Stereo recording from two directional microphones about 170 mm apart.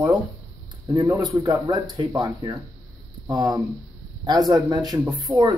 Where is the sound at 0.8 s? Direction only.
20° right (ahead or behind).